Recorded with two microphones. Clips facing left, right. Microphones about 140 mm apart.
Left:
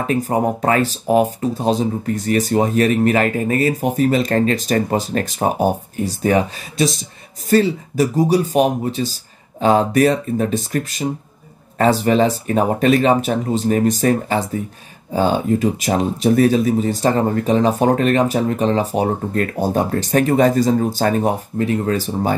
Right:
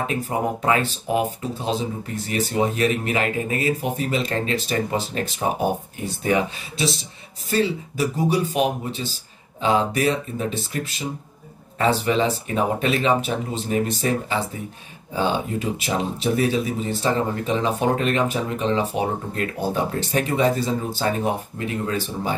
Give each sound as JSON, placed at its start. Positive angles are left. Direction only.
{"t": 0.1, "sound": "speech", "side_deg": 45}